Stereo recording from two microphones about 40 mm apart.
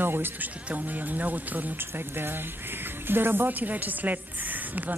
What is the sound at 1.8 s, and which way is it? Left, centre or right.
Speech, right.